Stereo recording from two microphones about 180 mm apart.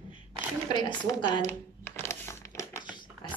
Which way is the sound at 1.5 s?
10° left (ahead or behind).